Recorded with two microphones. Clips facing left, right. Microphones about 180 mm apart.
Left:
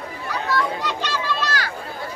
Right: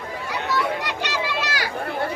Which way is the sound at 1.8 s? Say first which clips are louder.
Right 6 dB; 65° right (ahead or behind).